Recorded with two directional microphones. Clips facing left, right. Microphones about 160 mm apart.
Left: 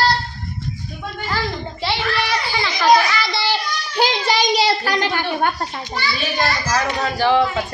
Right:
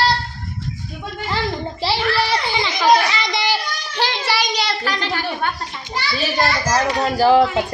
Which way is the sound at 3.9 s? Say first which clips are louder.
Left 3 dB; 15° left (ahead or behind).